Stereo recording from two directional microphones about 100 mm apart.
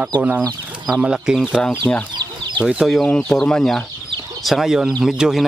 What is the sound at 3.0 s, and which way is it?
Speech, 10° left (ahead or behind).